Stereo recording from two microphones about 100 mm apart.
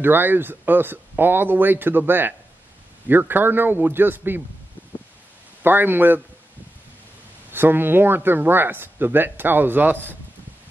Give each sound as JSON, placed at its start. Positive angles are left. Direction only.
{"t": 0.0, "sound": "speech", "side_deg": -20}
{"t": 5.6, "sound": "speech", "side_deg": -20}
{"t": 7.5, "sound": "speech", "side_deg": -20}